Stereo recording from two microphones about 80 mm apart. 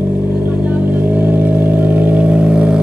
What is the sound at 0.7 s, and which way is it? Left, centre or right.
Vehicle, right.